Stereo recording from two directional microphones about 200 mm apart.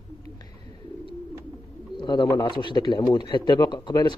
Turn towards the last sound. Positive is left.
turn(degrees=20)  # may be behind; listen again after turning